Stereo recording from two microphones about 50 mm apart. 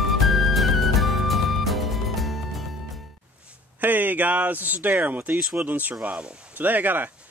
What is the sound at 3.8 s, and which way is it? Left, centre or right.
Speech, right.